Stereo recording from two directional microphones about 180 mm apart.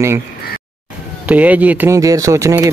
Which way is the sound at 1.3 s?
10° right (ahead or behind).